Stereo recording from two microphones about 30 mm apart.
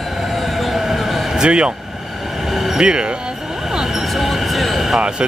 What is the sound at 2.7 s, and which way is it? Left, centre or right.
Speech, right.